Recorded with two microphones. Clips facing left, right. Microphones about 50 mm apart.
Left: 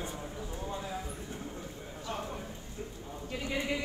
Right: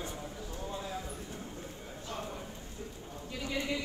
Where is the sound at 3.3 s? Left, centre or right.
Left.